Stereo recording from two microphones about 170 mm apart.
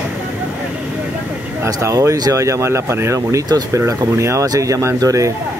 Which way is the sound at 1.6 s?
20° right (ahead or behind).